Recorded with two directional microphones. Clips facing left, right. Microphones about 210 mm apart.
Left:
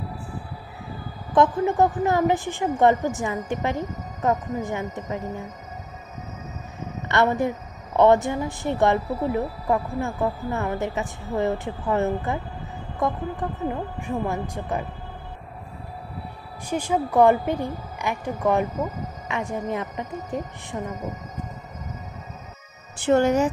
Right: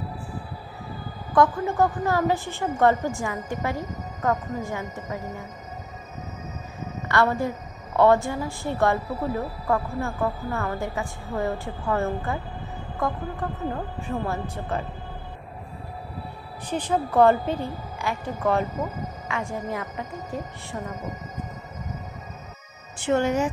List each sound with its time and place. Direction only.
1.3 s a woman's voice: 20° left (ahead or behind)
7.1 s a woman's voice: 20° left (ahead or behind)
13.4 s a woman's voice: 15° left (ahead or behind)
16.6 s a woman's voice: 10° left (ahead or behind)
23.0 s speech: 40° left (ahead or behind)